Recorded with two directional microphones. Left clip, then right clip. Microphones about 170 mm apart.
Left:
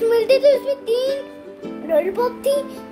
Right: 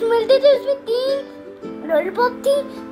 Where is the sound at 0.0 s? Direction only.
20° left (ahead or behind).